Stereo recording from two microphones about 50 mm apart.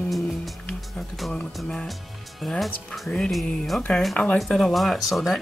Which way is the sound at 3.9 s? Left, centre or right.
Left.